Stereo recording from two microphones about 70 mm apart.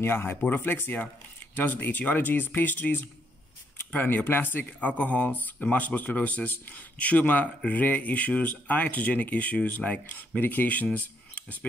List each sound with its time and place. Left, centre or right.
0.0 s speech: left